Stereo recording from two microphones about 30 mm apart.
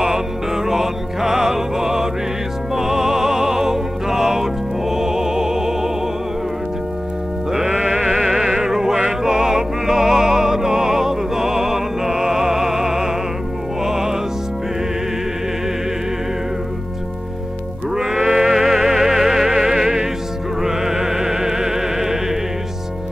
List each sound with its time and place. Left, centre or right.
0.0 s music: centre
2.7 s opera: centre
7.5 s music: right
8.1 s opera: centre
13.8 s music: centre
17.9 s music: centre